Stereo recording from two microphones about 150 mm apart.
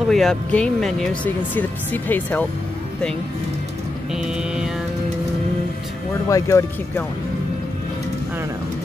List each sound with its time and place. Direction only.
0.0 s speech: centre (ahead or behind)
4.1 s mantra: 5° right (ahead or behind)
6.2 s speech: 20° left (ahead or behind)